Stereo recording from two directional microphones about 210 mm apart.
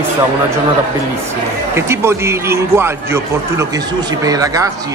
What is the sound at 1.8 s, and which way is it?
A man's voice, 10° right (ahead or behind).